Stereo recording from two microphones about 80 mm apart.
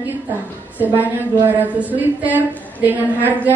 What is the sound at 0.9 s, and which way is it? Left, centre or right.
A woman's voice, right.